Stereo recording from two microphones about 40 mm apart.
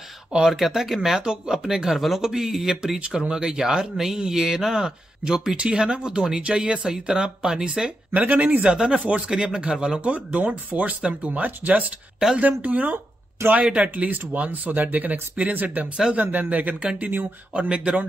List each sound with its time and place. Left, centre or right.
0.5 s speech: centre
8.1 s speech: right
8.6 s speech: right
17.6 s speech: right